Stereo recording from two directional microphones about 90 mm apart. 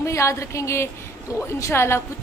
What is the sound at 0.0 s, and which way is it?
A woman's voice, 35° left (ahead or behind).